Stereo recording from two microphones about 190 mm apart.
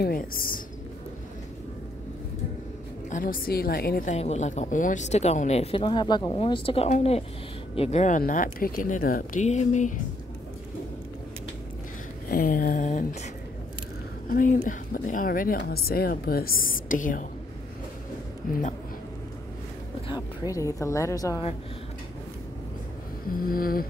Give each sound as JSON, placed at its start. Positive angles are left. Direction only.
{"t": 0.0, "sound": "speech", "side_deg": 50}
{"t": 3.1, "sound": "speech", "side_deg": 45}
{"t": 4.1, "sound": "a woman's voice", "side_deg": 35}
{"t": 12.3, "sound": "speech", "side_deg": 50}
{"t": 14.3, "sound": "speech", "side_deg": 45}
{"t": 18.5, "sound": "speech", "side_deg": 45}
{"t": 20.1, "sound": "a woman's voice", "side_deg": 20}
{"t": 23.4, "sound": "speech", "side_deg": 50}